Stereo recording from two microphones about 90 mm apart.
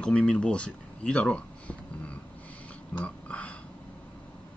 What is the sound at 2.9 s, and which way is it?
Dog, 15° left (ahead or behind).